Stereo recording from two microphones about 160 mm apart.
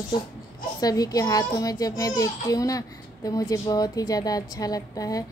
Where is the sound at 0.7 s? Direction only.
25° left (ahead or behind).